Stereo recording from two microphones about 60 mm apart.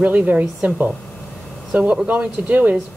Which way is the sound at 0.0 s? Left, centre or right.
Right.